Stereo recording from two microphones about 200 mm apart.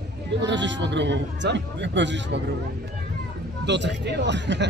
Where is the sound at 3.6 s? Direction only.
60° right (ahead or behind).